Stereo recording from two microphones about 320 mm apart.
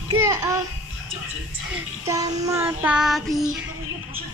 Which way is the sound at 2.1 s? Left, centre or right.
Centre.